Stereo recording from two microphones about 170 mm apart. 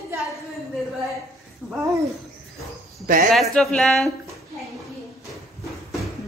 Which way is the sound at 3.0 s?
55° right (ahead or behind).